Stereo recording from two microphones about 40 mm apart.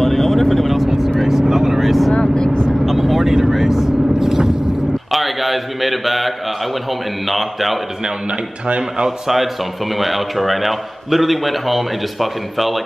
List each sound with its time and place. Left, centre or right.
0.0 s vehicle: centre
0.7 s vehicle: centre
2.1 s vehicle: left
2.8 s vehicle: centre
5.1 s a sound: centre
7.2 s a man's voice: centre
9.9 s a man's voice: centre